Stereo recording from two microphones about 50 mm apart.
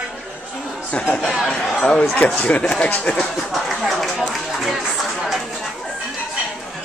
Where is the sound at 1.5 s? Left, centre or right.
Centre.